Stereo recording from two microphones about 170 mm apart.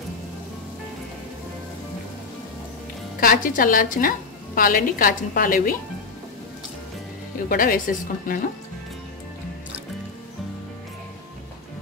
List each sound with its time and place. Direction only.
3.2 s a woman's voice: 55° left (ahead or behind)
7.4 s a woman's voice: 55° left (ahead or behind)